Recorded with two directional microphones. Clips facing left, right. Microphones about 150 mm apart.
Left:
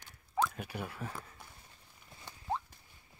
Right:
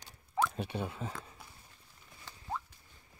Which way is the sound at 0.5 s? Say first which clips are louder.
Right 4 dB; 25° right (ahead or behind).